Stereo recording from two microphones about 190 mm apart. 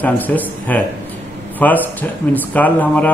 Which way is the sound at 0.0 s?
10° left (ahead or behind).